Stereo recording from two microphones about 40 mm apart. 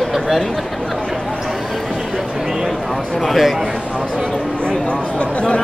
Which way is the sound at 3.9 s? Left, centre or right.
Right.